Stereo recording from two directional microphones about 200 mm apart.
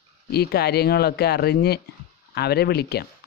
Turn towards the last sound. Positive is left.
turn(degrees=55)  # may be behind; listen again after turning